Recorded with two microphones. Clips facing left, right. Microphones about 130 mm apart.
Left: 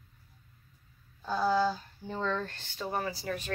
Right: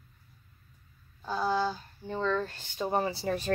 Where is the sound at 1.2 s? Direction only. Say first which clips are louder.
Left 2 dB; 5° right (ahead or behind).